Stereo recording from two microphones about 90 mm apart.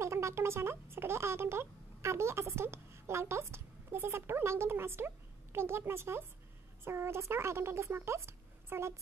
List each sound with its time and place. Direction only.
0.0 s speech: 30° right (ahead or behind)